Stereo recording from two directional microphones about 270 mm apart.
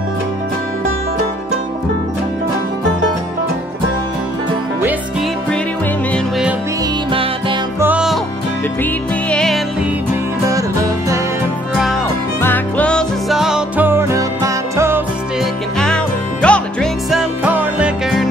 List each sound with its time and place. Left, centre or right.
7.1 s music: centre
7.8 s music: centre
9.3 s music: centre
11.8 s music: centre
15.8 s music: centre